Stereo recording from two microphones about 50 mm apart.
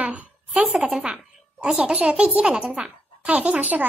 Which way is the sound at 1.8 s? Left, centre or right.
Right.